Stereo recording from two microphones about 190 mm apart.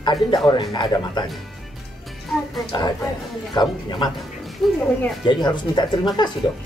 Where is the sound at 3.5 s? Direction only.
25° left (ahead or behind).